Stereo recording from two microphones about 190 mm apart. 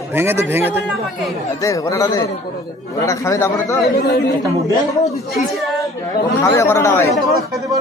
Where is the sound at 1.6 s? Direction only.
15° left (ahead or behind).